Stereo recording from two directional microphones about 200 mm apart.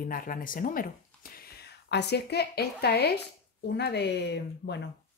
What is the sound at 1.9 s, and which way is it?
A woman's voice, 55° left (ahead or behind).